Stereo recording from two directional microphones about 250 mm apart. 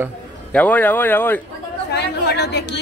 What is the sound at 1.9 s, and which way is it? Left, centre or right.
Speech, left.